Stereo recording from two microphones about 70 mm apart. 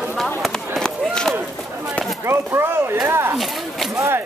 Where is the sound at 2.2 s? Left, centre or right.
Right.